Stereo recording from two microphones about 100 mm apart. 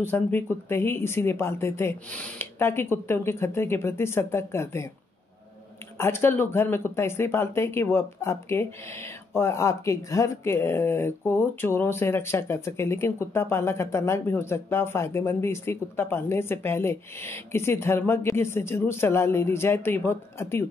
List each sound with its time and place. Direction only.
0.0 s speech: 20° left (ahead or behind)
2.1 s speech: 15° left (ahead or behind)
2.6 s speech: 25° left (ahead or behind)
5.9 s speech: 25° left (ahead or behind)